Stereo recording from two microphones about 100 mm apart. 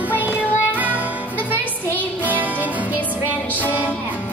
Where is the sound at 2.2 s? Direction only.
15° right (ahead or behind).